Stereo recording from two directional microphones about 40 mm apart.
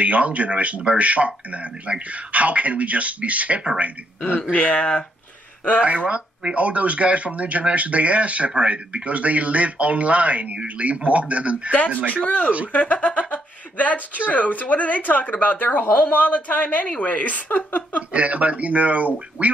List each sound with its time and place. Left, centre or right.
0.0 s speech: right
4.4 s speech: left
5.9 s speech: right
12.2 s speech: left
15.8 s a woman's voice: left
18.1 s speech: right